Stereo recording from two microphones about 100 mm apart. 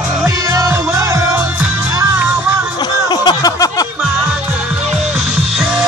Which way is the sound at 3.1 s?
45° left (ahead or behind).